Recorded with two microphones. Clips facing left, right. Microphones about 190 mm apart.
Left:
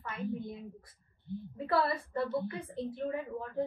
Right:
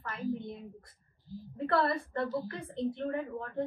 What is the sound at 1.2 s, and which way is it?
Speech, 65° left (ahead or behind).